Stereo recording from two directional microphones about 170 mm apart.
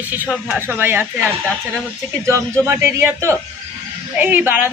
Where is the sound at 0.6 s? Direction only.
15° right (ahead or behind).